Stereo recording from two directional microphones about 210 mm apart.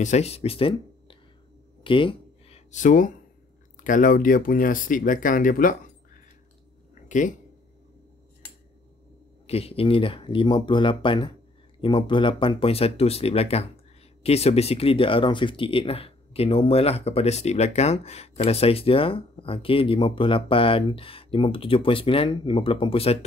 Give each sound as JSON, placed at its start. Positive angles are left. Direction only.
{"t": 0.0, "sound": "speech", "side_deg": 30}
{"t": 1.8, "sound": "a sound", "side_deg": 25}
{"t": 3.7, "sound": "speech", "side_deg": 40}
{"t": 7.1, "sound": "speech", "side_deg": 35}
{"t": 9.5, "sound": "speech", "side_deg": 30}